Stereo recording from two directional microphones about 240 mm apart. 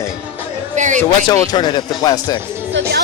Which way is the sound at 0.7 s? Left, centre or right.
Right.